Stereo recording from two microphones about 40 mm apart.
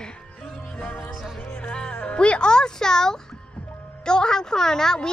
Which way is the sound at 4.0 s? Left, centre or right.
Centre.